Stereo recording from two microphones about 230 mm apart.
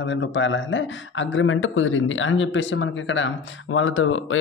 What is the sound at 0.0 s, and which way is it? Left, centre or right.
Speech, left.